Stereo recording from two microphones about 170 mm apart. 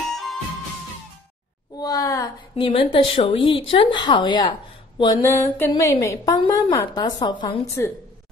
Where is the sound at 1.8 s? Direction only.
20° left (ahead or behind).